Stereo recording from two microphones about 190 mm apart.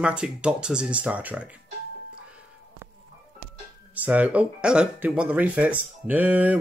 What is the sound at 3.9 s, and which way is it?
Speech, 10° right (ahead or behind).